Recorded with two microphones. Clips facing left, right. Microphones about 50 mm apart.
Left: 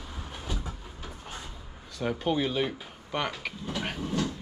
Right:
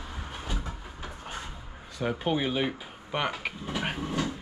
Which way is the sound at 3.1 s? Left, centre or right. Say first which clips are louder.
Right 1 dB; centre.